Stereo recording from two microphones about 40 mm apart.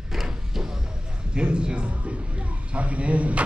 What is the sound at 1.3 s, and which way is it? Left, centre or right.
A man's voice, right.